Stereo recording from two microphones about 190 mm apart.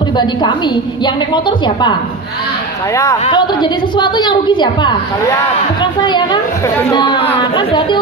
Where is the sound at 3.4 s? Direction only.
25° left (ahead or behind).